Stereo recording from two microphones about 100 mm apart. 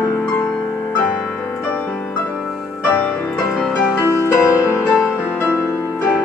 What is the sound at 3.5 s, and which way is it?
Music, 5° left (ahead or behind).